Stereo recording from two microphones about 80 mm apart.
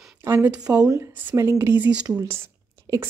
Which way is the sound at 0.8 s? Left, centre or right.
Right.